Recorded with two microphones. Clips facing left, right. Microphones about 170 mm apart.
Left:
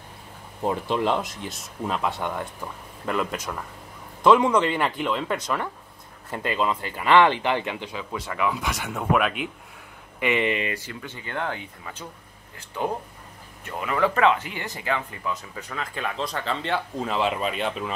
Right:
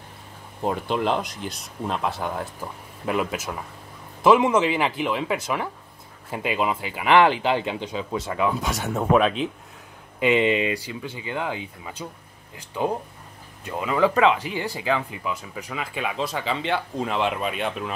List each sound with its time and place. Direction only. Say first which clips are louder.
0.7 s speech: even; centre (ahead or behind); by 9.0 s 30° right (ahead or behind)
10.2 s speech: right 4 dB; 20° right (ahead or behind); by 17.9 s centre (ahead or behind)